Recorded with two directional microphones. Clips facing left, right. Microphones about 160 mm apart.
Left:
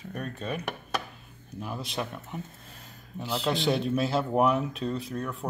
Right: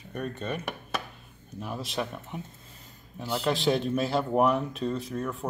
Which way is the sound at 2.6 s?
75° left (ahead or behind).